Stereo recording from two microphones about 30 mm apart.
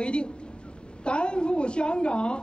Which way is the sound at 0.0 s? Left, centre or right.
Left.